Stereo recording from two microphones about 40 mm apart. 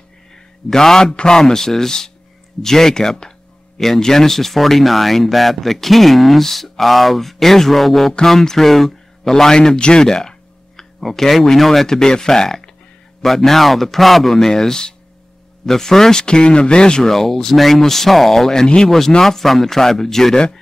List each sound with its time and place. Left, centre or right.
0.7 s speech: centre
11.0 s speech: centre; by 17.1 s left
17.1 s speech: centre